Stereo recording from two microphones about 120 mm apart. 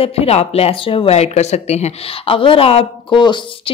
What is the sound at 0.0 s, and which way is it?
Speech, 55° left (ahead or behind).